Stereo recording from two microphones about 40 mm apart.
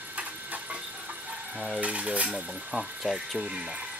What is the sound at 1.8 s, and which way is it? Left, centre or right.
Speech, right.